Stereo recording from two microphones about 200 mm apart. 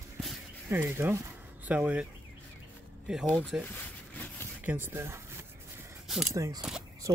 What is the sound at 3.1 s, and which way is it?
Speech, 5° right (ahead or behind).